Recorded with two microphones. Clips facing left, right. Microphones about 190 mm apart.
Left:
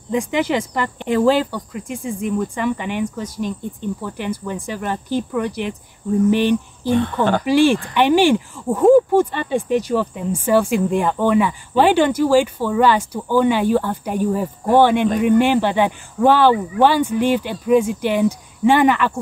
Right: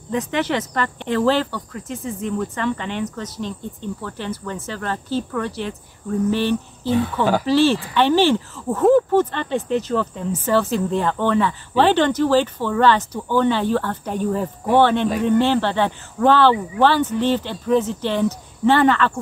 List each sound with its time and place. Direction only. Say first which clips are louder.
0.1 s speech: left 3 dB; 10° left (ahead or behind)
6.9 s speech: left 2 dB; 5° right (ahead or behind)
7.4 s speech: left 3 dB; 15° left (ahead or behind)